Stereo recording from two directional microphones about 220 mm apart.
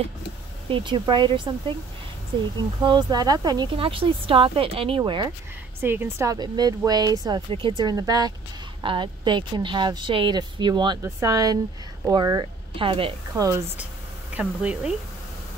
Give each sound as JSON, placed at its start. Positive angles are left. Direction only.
{"t": 0.7, "sound": "speech", "side_deg": -20}
{"t": 2.8, "sound": "speech", "side_deg": -20}
{"t": 5.8, "sound": "speech", "side_deg": -10}
{"t": 13.5, "sound": "speech", "side_deg": -10}